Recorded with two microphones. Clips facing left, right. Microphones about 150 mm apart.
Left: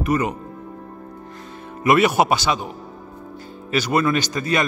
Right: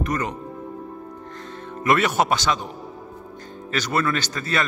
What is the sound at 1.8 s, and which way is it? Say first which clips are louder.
Speech: left 4 dB; 10° left (ahead or behind).